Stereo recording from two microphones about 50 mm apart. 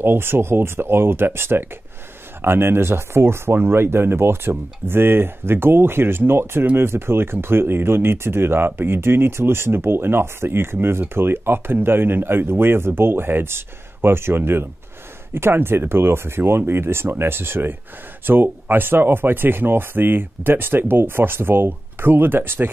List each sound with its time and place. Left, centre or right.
0.0 s speech: right